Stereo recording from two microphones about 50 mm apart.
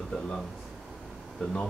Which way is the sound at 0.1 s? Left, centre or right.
Centre.